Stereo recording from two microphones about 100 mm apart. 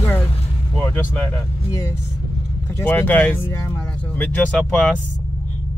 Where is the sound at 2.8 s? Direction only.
20° left (ahead or behind).